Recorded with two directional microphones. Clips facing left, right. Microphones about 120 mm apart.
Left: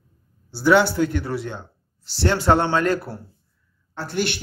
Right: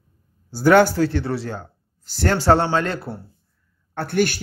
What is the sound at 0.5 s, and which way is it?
Speech, 50° right (ahead or behind).